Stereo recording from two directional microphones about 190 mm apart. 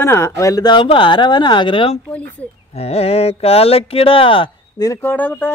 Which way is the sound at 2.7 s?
30° left (ahead or behind).